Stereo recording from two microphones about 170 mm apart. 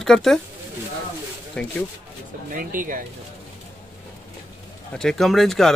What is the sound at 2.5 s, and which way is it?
Speech, 55° right (ahead or behind).